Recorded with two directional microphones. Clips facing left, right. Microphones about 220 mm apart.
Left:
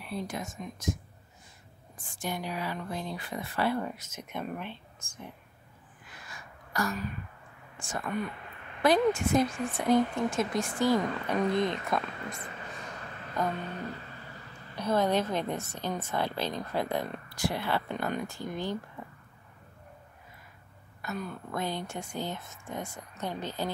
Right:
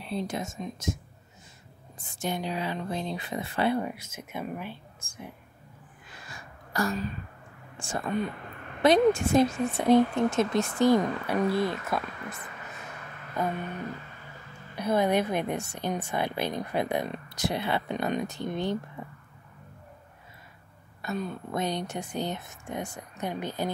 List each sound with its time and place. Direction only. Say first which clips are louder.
0.0 s speech: right 4 dB; 25° right (ahead or behind)
2.2 s speech: right 3 dB; 25° right (ahead or behind)
6.1 s a sound: right 2 dB; 30° right (ahead or behind)
7.7 s speech: right 4 dB; 30° right (ahead or behind)
11.2 s a woman's voice: right 1 dB; 10° right (ahead or behind)
14.8 s a woman's voice: right 2 dB; 10° right (ahead or behind)
21.0 s a woman's voice: right 4 dB; 25° right (ahead or behind)